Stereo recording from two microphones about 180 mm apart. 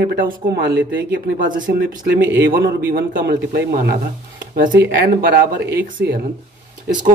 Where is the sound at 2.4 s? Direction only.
60° right (ahead or behind).